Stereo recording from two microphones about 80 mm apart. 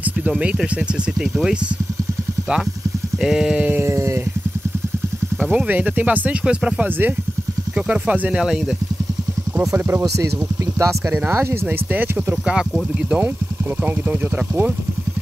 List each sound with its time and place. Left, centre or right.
0.3 s speech: centre
3.2 s speech: centre
3.6 s speech: right
5.5 s speech: right
9.6 s speech: right
11.9 s speech: right